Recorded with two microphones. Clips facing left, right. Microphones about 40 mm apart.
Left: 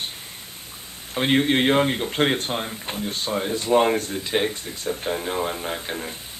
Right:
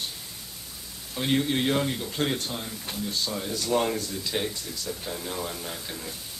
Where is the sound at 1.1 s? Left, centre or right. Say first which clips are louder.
Left 6 dB; left.